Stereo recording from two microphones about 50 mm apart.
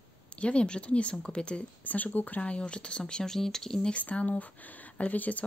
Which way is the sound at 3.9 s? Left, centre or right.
Left.